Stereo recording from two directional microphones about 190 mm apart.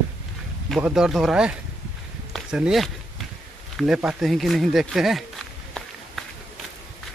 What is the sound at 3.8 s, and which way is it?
Speech, 5° right (ahead or behind).